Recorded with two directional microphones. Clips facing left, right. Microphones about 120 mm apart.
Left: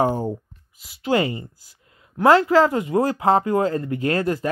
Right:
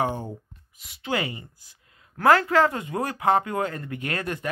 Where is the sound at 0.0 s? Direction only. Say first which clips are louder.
Left 6 dB; 40° left (ahead or behind).